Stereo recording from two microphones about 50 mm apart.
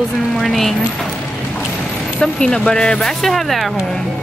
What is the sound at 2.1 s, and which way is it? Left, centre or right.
Speech, centre.